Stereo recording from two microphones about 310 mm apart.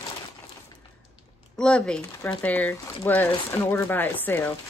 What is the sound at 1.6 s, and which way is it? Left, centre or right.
Speech, centre.